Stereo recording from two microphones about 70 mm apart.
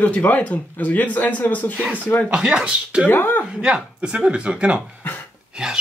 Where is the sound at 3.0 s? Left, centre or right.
Left.